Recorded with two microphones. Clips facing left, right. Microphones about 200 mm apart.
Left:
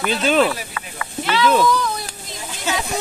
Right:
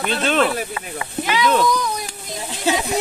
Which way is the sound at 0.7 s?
25° right (ahead or behind).